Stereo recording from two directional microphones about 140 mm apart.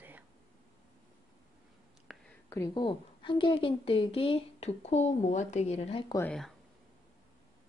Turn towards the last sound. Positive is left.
turn(degrees=5)  # may be behind; listen again after turning